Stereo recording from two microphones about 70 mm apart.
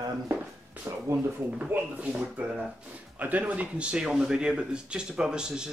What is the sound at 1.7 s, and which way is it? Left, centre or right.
Speech, centre.